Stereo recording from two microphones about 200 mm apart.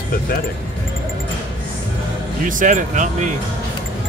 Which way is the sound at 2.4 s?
40° right (ahead or behind).